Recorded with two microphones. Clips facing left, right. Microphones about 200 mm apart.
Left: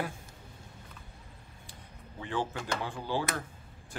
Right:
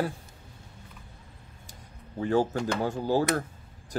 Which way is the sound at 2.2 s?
40° right (ahead or behind).